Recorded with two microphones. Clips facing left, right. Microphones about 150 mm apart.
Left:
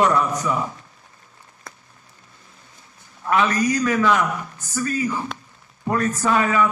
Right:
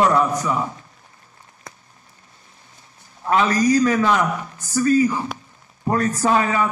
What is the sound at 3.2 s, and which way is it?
A man's voice, 30° right (ahead or behind).